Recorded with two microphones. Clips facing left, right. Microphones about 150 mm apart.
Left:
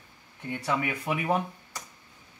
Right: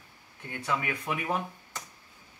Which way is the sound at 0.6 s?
30° left (ahead or behind).